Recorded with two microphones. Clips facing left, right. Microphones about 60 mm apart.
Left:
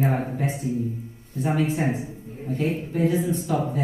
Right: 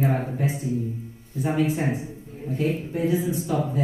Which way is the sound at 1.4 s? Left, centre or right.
Centre.